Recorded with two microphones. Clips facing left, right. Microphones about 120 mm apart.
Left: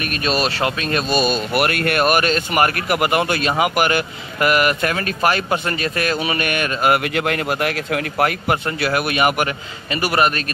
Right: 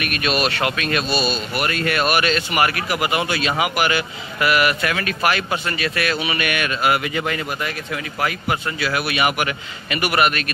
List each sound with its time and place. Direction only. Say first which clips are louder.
0.0 s speech: left 1 dB; 35° left (ahead or behind)